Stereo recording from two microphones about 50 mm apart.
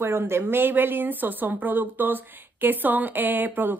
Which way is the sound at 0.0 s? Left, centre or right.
Right.